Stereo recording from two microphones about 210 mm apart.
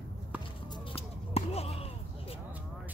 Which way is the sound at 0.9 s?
30° left (ahead or behind).